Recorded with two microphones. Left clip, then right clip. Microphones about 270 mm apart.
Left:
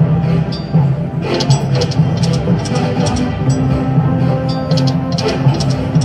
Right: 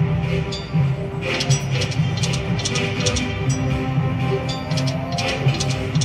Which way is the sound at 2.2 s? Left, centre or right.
Centre.